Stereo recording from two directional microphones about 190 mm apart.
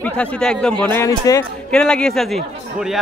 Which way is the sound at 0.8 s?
15° left (ahead or behind).